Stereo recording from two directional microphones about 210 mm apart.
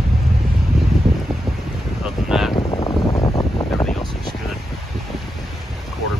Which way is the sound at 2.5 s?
20° left (ahead or behind).